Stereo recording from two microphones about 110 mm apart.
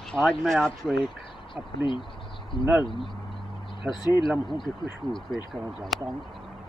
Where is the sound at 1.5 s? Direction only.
50° left (ahead or behind).